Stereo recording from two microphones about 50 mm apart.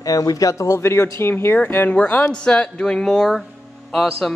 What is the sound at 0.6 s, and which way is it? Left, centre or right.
Speech, left.